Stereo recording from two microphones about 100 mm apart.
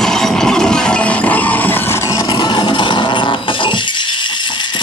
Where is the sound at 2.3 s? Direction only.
45° left (ahead or behind).